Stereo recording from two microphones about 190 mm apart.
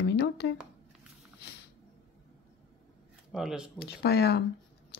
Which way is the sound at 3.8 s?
60° left (ahead or behind).